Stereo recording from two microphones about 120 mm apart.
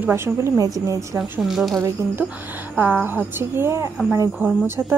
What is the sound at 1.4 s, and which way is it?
Speech, centre (ahead or behind).